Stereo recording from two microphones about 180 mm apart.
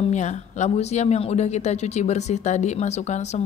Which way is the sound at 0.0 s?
40° left (ahead or behind).